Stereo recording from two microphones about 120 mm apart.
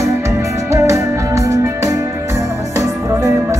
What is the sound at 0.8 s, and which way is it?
Music, 25° right (ahead or behind).